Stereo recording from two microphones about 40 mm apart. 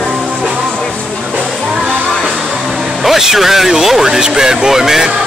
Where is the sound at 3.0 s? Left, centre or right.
Centre.